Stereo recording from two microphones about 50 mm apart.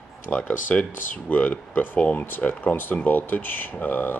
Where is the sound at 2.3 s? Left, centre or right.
Left.